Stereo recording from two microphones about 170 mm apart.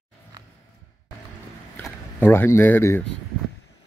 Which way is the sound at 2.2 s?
15° left (ahead or behind).